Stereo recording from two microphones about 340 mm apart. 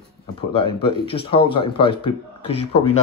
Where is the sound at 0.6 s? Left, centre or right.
Centre.